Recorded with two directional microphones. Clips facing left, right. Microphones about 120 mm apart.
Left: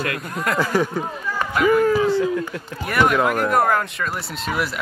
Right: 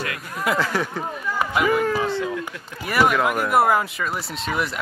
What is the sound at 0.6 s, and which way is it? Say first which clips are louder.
Speech: left 4 dB; 15° left (ahead or behind).